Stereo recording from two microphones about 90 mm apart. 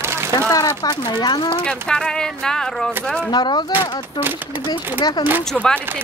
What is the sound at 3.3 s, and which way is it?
Speech, 60° left (ahead or behind).